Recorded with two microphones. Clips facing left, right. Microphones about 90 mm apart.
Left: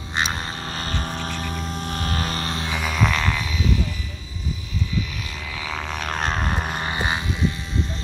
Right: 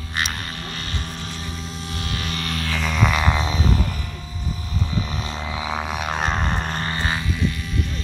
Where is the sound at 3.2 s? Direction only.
25° right (ahead or behind).